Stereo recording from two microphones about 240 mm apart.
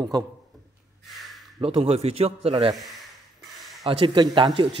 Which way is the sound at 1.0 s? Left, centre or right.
Centre.